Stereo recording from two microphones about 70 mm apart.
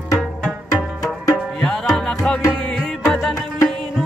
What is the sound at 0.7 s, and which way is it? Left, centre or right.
Music, left.